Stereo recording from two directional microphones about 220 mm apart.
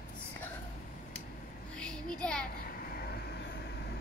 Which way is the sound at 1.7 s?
5° left (ahead or behind).